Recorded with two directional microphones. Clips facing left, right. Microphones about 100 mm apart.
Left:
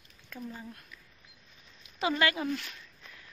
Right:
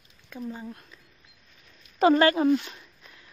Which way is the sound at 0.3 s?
20° right (ahead or behind).